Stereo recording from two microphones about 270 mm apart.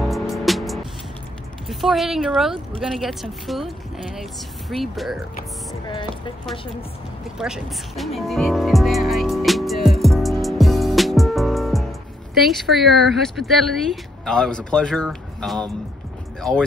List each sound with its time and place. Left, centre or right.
0.1 s music: centre
1.7 s a woman's voice: centre
5.9 s speech: centre
7.3 s music: centre
12.4 s a woman's voice: centre